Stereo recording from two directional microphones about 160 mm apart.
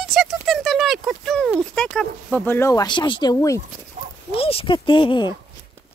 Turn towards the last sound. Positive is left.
turn(degrees=30)  # may be behind; listen again after turning